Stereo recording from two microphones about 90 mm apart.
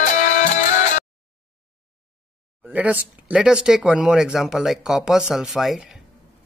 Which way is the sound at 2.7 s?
15° right (ahead or behind).